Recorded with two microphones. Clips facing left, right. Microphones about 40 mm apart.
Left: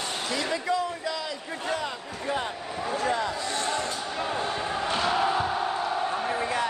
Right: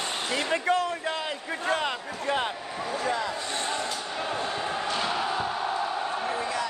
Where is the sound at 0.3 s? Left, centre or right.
Right.